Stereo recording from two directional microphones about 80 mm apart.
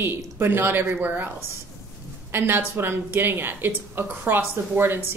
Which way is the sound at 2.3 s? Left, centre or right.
Right.